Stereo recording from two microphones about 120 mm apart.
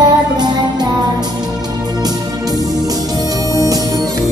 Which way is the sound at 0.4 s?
35° right (ahead or behind).